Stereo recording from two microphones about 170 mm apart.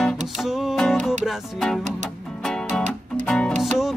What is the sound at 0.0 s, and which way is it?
Music, centre (ahead or behind).